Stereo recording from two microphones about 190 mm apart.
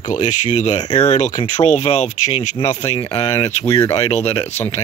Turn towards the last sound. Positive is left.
turn(degrees=35)  # may be behind; listen again after turning